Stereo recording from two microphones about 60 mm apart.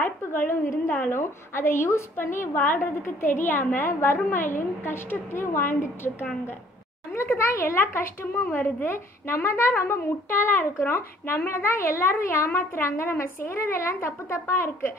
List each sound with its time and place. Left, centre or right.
0.0 s a woman's voice: left
7.3 s a woman's voice: left
11.0 s a woman's voice: left